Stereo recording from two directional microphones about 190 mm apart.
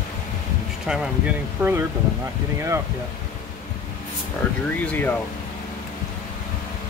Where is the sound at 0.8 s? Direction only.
5° right (ahead or behind).